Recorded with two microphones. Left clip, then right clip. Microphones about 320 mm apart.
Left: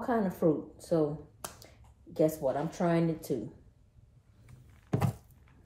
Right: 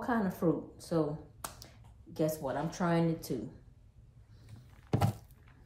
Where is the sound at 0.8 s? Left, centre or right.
Centre.